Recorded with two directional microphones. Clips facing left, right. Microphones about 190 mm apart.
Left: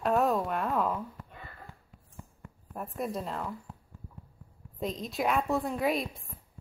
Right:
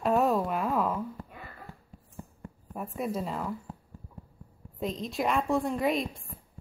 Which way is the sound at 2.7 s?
Centre (ahead or behind).